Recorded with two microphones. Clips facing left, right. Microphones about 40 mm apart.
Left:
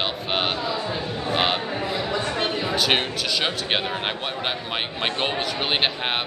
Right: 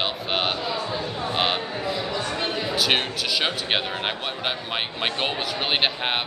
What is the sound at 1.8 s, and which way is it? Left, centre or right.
Speech, left.